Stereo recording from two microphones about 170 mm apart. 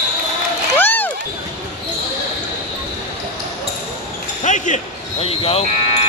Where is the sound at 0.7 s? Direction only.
10° left (ahead or behind).